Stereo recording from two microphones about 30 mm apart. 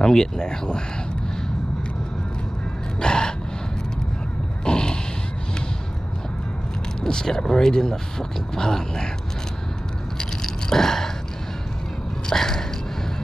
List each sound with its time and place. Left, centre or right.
0.0 s speech: left
3.0 s gasp: left
4.6 s a sound: left
7.0 s speech: left
10.1 s biting: left
12.3 s a sound: centre